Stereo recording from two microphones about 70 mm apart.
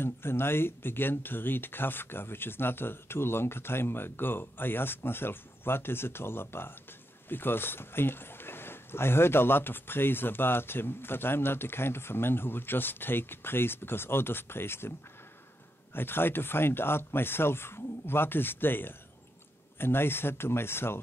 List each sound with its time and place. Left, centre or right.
0.0 s speech: left